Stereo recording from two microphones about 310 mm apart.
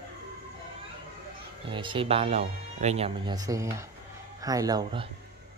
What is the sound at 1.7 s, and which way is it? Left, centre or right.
Speech, centre.